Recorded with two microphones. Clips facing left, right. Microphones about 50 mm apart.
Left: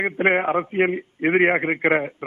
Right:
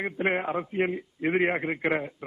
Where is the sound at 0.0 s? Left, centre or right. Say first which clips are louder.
Left 8 dB; left.